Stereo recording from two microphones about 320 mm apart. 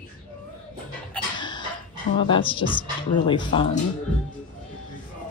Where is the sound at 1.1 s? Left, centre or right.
Centre.